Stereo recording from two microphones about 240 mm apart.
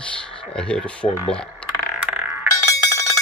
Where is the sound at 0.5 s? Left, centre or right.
Centre.